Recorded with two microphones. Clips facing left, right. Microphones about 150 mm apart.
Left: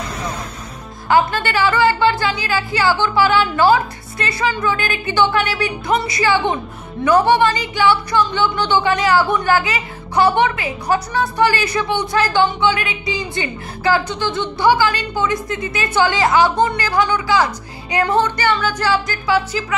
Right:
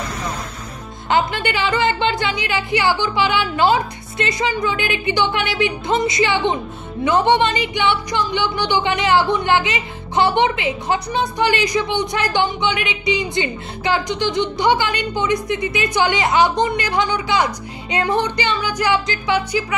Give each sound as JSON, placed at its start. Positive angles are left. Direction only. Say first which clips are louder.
{"t": 1.0, "sound": "speech", "louder": "left 3 dB", "side_deg": -20}